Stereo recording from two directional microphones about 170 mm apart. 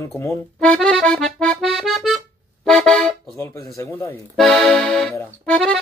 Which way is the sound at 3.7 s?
15° left (ahead or behind).